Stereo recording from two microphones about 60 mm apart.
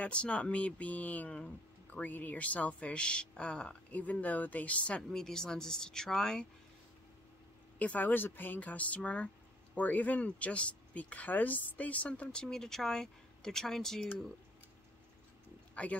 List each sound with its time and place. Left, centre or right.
0.0 s speech: centre
5.1 s speech: centre
7.8 s speech: left; by 14.0 s centre
15.7 s speech: left